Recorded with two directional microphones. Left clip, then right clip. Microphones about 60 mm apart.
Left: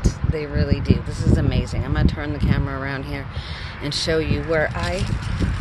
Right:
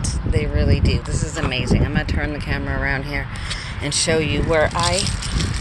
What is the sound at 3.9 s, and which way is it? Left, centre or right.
Speech, left.